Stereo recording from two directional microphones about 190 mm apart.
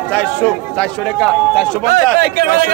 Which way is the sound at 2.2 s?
50° right (ahead or behind).